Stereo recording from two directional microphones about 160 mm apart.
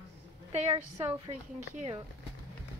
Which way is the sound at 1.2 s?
45° right (ahead or behind).